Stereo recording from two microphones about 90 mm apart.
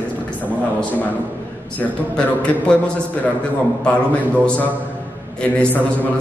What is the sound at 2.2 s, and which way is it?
A man's voice, 15° left (ahead or behind).